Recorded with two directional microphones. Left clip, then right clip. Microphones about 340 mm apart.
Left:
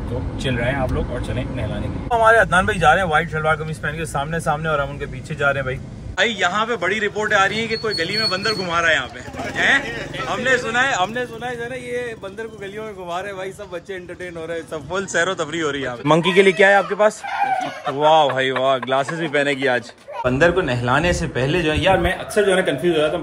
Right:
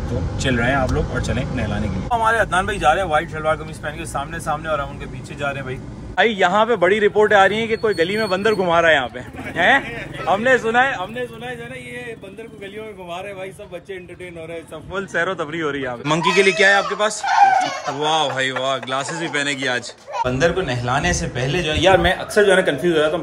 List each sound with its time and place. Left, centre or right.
2.0 s a man's voice: centre
14.5 s a man's voice: centre